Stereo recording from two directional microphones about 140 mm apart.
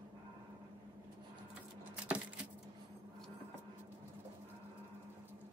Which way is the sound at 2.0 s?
10° right (ahead or behind).